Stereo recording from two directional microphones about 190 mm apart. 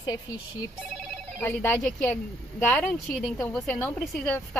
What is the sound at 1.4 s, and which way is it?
Speech, 10° left (ahead or behind).